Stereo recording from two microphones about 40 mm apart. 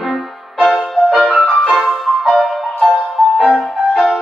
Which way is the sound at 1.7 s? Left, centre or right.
Centre.